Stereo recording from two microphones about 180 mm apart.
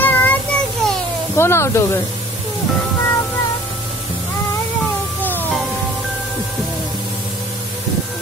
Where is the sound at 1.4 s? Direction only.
15° left (ahead or behind).